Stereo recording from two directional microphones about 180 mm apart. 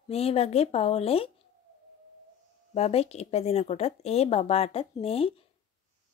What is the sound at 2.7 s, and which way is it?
Speech, 35° left (ahead or behind).